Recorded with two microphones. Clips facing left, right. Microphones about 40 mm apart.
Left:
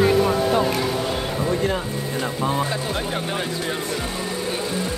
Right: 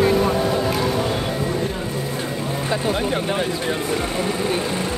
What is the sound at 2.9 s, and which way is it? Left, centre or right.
Speech, centre.